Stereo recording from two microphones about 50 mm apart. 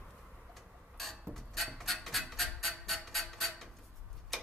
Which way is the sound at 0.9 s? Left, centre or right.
Centre.